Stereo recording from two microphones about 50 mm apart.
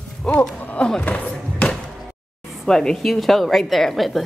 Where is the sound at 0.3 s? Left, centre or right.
Centre.